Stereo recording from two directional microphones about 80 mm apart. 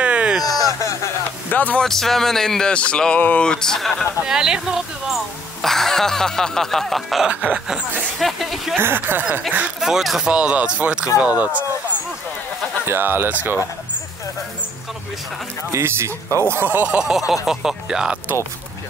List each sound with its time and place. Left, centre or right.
0.0 s a sound: centre
0.4 s a sound: left
1.5 s speech: left
1.8 s speech: centre
4.3 s speech: centre
7.2 s speech: centre
8.7 s speech: right
9.8 s speech: centre
12.8 s speech: right
15.7 s speech: right
16.5 s speech: right
17.3 s speech: centre